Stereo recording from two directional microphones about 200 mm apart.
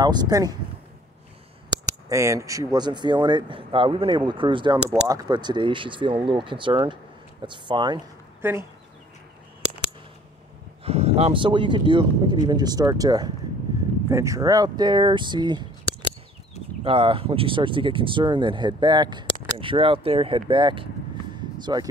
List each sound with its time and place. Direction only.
0.0 s speech: 20° right (ahead or behind)
2.0 s speech: 15° right (ahead or behind)
8.4 s speech: 10° right (ahead or behind)
10.8 s speech: 30° right (ahead or behind)
16.8 s speech: 25° right (ahead or behind)